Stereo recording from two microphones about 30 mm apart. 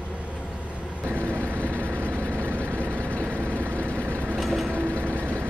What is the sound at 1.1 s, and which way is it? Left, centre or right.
Vehicle, right.